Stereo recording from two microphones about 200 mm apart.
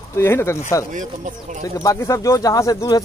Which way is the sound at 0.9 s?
40° right (ahead or behind).